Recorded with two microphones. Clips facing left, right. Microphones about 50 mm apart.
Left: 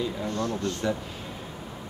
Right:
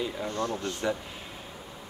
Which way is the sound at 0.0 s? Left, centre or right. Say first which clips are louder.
Left 2 dB; centre.